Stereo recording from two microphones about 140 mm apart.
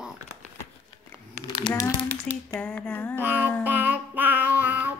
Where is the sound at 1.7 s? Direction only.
25° left (ahead or behind).